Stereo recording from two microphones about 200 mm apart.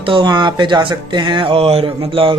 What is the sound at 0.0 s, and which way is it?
Speech, 25° right (ahead or behind).